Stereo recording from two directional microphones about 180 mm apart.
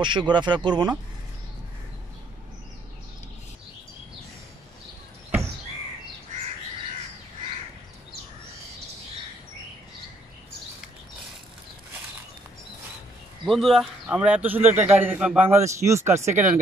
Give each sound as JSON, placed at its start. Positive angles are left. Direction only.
{"t": 0.0, "sound": "speech", "side_deg": -25}
{"t": 6.3, "sound": "bird", "side_deg": -45}
{"t": 13.5, "sound": "a man's voice", "side_deg": 0}